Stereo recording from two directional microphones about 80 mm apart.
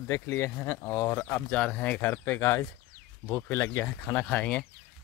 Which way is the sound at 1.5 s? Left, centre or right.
Centre.